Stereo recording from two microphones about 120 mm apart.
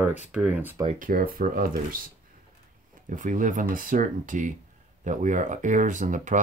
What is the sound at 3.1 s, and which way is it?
Speech, 90° right.